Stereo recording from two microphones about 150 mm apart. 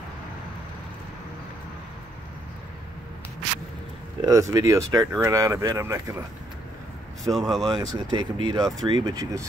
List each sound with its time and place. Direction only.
4.2 s speech: 20° right (ahead or behind)
7.2 s speech: centre (ahead or behind)
7.6 s speech: 25° right (ahead or behind)